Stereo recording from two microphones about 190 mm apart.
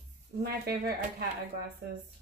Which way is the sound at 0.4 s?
55° right (ahead or behind).